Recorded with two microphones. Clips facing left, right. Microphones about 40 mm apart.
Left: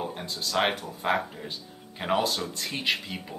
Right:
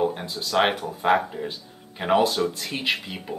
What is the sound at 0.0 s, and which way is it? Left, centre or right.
Speech, centre.